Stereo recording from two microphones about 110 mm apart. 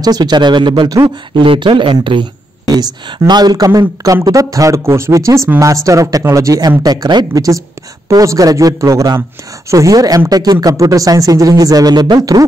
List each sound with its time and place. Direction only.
0.0 s speech: 40° right (ahead or behind)
2.6 s speech: 40° right (ahead or behind)